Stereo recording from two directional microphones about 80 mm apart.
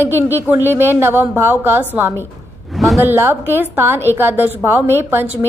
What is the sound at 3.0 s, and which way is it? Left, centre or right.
A woman's voice, right.